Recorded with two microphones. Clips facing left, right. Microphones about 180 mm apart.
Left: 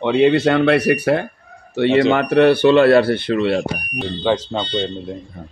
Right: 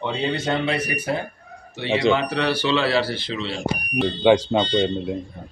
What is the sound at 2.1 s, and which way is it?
Speech, 55° left (ahead or behind).